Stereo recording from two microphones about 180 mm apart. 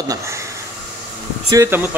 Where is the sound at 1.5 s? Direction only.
15° right (ahead or behind).